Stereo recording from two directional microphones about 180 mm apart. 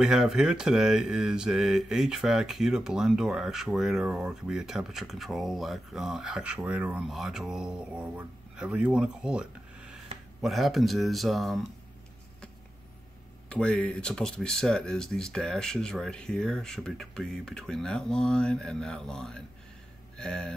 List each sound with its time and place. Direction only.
0.0 s speech: 5° right (ahead or behind)
13.5 s speech: 5° left (ahead or behind)